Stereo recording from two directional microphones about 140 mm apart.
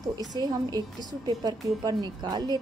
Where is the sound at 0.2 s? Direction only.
30° right (ahead or behind).